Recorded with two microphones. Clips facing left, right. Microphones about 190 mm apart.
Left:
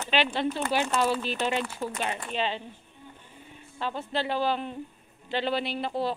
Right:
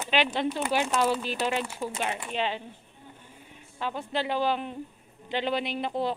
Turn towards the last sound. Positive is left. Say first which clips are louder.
# even
turn(degrees=-20)  # may be behind; listen again after turning